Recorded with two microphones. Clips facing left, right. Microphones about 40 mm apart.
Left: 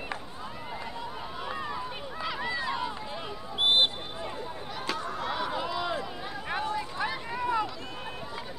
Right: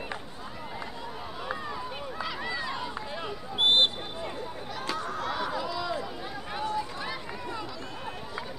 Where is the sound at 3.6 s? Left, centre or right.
Right.